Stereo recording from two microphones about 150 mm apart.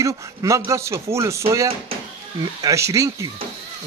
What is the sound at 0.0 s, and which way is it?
Speech, 20° right (ahead or behind).